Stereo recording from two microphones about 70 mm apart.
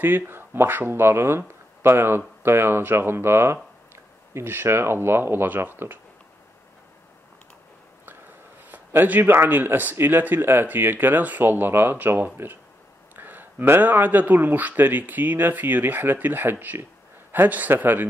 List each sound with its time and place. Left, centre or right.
0.0 s speech: right
8.7 s speech: right